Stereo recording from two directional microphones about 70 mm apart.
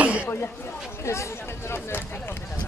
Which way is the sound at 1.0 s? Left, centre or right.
Left.